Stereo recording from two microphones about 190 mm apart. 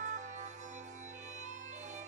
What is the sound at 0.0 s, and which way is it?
Music, 40° right (ahead or behind).